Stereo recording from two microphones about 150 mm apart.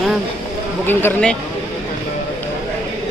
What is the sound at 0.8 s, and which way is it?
Speech, 15° left (ahead or behind).